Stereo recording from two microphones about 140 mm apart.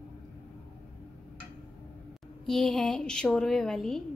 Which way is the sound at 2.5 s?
5° left (ahead or behind).